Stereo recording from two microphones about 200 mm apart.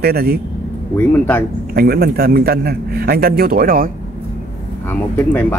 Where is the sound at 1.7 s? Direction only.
50° right (ahead or behind).